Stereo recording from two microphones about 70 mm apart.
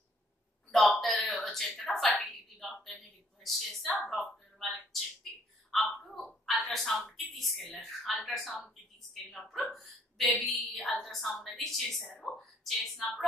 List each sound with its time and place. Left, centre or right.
0.7 s a sound: centre
6.7 s a woman's voice: centre
9.7 s hiccup: centre
10.4 s a woman's voice: centre
10.8 s a woman's voice: centre
11.1 s a woman's voice: centre
12.0 s speech: centre
12.4 s a sound: centre